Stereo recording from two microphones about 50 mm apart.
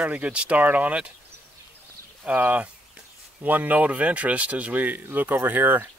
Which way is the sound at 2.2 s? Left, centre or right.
Right.